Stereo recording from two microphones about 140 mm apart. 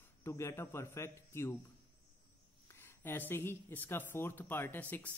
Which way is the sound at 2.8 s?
15° left (ahead or behind).